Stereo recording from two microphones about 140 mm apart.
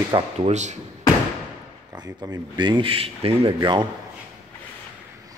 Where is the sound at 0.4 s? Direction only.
55° right (ahead or behind).